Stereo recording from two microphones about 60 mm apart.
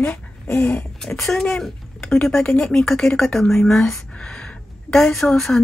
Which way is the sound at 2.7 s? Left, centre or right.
Centre.